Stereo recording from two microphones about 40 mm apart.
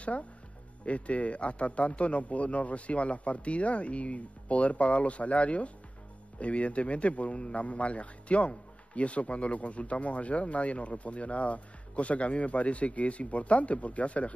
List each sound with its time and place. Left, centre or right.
0.8 s a man's voice: left